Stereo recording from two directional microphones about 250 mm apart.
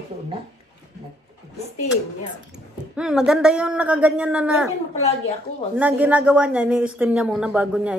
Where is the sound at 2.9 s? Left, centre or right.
Centre.